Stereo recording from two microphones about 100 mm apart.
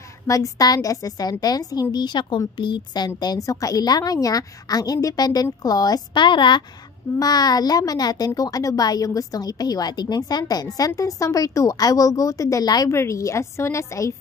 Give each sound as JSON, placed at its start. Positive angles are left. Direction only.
{"t": 0.3, "sound": "a woman's voice", "side_deg": 35}
{"t": 7.2, "sound": "a woman's voice", "side_deg": 40}